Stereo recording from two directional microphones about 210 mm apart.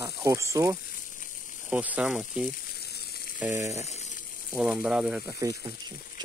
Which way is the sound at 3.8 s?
35° left (ahead or behind).